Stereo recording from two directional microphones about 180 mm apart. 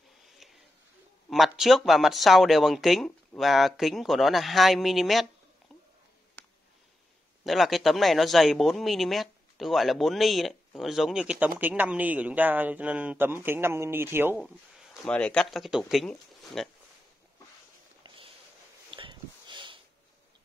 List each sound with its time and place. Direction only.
1.3 s speech: centre (ahead or behind)
7.4 s speech: centre (ahead or behind)
15.0 s speech: 5° left (ahead or behind)
18.0 s a sound: 30° right (ahead or behind)
18.9 s sniff: 25° right (ahead or behind)